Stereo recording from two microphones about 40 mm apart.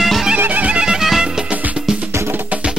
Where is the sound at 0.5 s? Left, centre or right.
Right.